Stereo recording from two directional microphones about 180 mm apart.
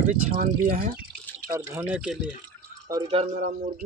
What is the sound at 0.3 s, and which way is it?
Speech, 45° right (ahead or behind).